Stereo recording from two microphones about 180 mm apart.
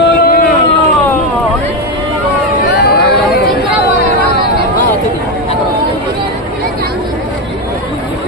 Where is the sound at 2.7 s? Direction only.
65° left (ahead or behind).